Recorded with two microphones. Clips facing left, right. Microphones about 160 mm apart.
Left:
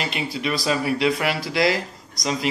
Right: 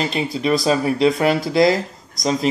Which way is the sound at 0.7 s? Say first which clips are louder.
Right 3 dB; 35° right (ahead or behind).